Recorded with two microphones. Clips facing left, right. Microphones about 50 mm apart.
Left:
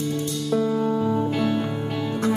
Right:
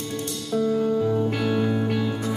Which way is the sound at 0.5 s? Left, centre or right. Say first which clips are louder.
Even; left.